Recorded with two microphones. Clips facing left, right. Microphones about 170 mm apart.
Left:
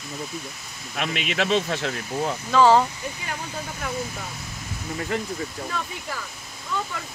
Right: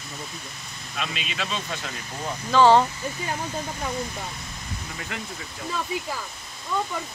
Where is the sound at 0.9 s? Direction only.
65° left (ahead or behind).